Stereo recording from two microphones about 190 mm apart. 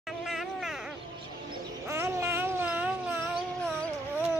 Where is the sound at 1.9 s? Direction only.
15° right (ahead or behind).